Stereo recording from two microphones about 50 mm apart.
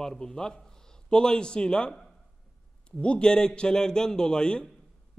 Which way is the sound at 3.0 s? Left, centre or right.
Left.